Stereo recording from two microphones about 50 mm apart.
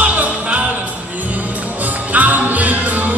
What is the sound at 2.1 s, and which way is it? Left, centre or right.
Music, right.